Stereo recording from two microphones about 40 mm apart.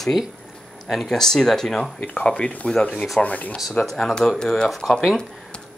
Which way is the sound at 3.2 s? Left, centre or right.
Left.